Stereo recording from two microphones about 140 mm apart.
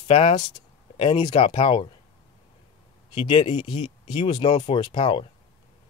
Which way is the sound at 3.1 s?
40° left (ahead or behind).